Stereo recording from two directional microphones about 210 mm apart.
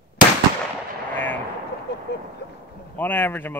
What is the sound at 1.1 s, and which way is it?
Artillery fire, 10° left (ahead or behind).